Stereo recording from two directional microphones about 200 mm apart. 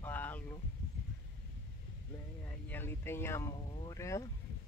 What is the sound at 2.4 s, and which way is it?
Speech, 10° left (ahead or behind).